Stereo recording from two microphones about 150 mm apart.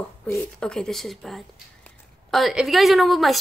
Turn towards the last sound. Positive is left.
turn(degrees=0)  # may be behind; listen again after turning